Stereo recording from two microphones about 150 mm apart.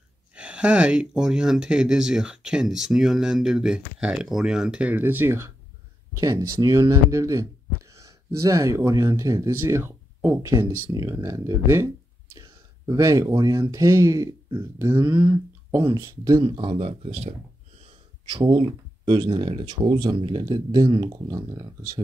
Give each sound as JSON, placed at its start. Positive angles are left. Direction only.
{"t": 0.3, "sound": "speech", "side_deg": -5}
{"t": 15.0, "sound": "speech", "side_deg": -30}
{"t": 16.4, "sound": "speech", "side_deg": -35}
{"t": 18.3, "sound": "speech", "side_deg": -35}